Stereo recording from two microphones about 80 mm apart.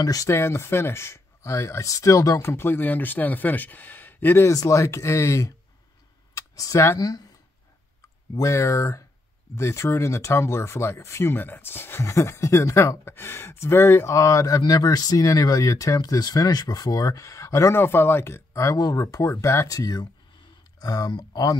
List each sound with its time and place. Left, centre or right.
0.0 s speech: left
2.5 s speech: left
4.5 s speech: left
6.3 s a sound: left
7.0 s speech: left
8.4 s speech: left
14.1 s speech: left